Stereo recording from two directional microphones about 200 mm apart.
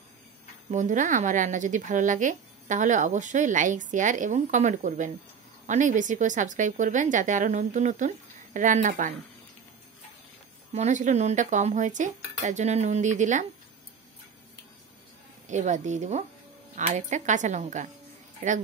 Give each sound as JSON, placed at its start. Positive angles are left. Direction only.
{"t": 0.7, "sound": "a woman's voice", "side_deg": -40}
{"t": 10.7, "sound": "a woman's voice", "side_deg": -35}
{"t": 15.4, "sound": "a woman's voice", "side_deg": -35}